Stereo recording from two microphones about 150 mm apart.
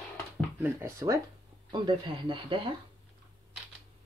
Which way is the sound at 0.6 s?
15° right (ahead or behind).